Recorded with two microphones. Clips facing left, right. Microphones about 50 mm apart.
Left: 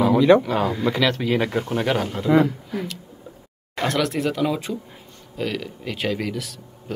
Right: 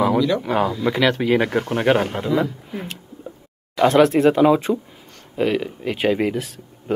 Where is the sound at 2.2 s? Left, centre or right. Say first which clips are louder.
Left 3 dB; left.